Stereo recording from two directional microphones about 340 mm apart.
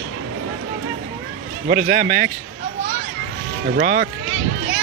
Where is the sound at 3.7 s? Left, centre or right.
Right.